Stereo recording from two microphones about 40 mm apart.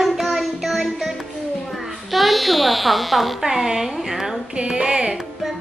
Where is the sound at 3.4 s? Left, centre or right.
Centre.